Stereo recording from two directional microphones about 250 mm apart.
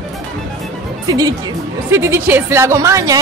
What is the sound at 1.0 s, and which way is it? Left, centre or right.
A woman's voice, centre.